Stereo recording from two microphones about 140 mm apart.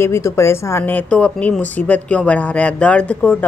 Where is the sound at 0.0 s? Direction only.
20° left (ahead or behind).